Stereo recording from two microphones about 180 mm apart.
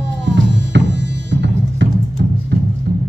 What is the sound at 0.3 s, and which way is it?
Music, 85° right.